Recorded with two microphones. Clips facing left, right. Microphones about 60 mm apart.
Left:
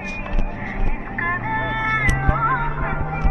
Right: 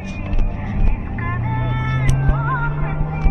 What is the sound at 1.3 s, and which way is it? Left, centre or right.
Vehicle, left.